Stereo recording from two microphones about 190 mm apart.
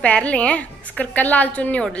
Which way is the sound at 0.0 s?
5° left (ahead or behind).